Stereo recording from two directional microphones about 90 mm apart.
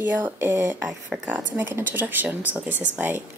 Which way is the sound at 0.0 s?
25° right (ahead or behind).